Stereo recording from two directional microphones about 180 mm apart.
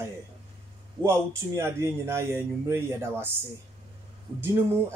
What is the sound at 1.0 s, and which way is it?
Speech, 15° right (ahead or behind).